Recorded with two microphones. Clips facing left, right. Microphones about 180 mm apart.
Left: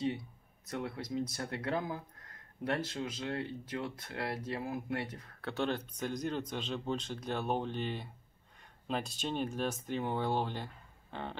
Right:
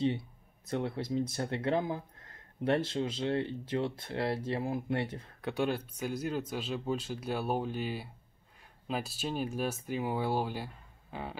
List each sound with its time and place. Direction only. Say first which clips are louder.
0.7 s speech: right 5 dB; 30° right (ahead or behind)
5.4 s speech: right 3 dB; 10° right (ahead or behind)